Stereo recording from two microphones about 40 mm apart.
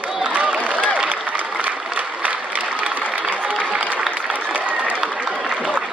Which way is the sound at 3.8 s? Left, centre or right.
Right.